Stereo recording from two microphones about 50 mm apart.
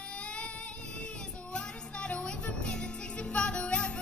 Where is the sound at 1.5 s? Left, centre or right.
Left.